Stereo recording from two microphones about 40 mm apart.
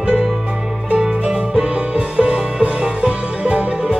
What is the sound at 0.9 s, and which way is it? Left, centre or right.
Music, centre.